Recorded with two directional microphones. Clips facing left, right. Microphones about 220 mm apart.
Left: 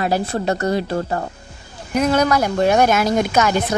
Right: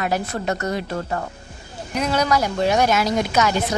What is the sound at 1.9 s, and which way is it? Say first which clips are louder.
Speech: left 4 dB; 50° left (ahead or behind).